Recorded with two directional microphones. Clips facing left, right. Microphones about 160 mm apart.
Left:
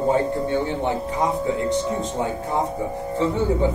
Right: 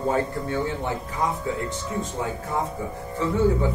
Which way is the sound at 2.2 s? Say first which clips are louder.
Left 4 dB; 25° left (ahead or behind).